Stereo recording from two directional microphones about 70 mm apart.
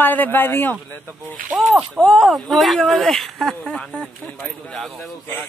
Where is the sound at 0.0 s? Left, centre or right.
Left.